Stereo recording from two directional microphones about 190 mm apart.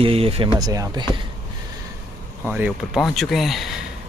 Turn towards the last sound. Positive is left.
turn(degrees=0)  # may be behind; listen again after turning